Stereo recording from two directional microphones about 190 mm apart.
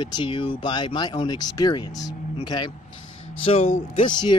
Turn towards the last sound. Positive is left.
turn(degrees=25)  # may be behind; listen again after turning